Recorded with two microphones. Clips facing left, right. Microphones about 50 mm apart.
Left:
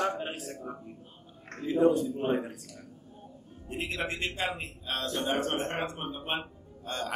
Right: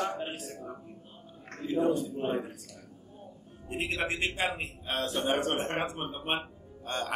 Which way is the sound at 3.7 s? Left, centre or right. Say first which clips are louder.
Right 2 dB; centre.